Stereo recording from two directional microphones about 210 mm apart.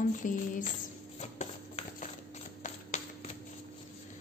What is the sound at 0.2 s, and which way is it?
Speech, 40° left (ahead or behind).